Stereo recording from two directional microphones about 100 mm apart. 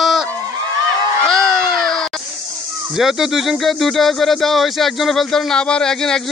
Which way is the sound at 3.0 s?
5° right (ahead or behind).